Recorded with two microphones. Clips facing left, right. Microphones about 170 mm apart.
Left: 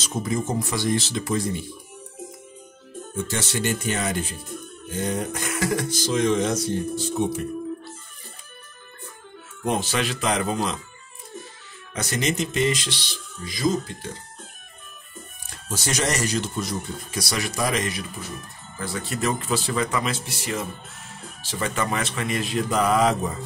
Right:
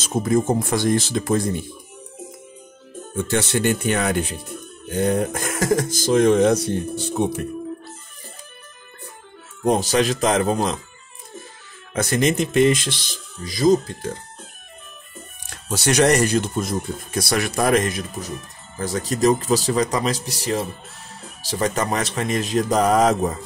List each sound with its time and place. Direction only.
0.0 s speech: 50° right (ahead or behind)
3.3 s speech: 60° right (ahead or behind)
9.6 s speech: 40° right (ahead or behind)
11.9 s speech: 55° right (ahead or behind)
15.5 s speech: 70° right (ahead or behind); by 23.3 s 45° right (ahead or behind)